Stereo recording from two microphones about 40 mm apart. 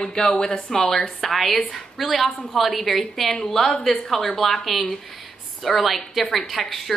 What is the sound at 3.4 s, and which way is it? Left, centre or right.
A woman's voice, centre.